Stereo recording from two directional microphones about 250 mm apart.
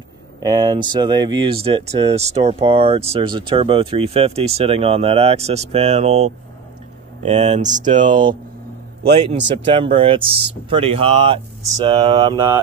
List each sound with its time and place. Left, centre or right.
0.4 s speech: centre
8.1 s speech: centre
9.7 s speech: right